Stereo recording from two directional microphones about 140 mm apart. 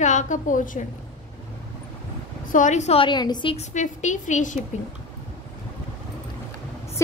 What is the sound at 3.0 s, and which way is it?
Speech, 30° left (ahead or behind).